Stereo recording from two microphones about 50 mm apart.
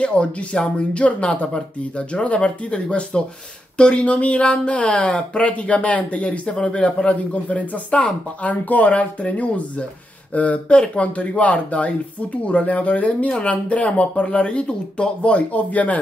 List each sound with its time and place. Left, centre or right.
0.0 s a man's voice: left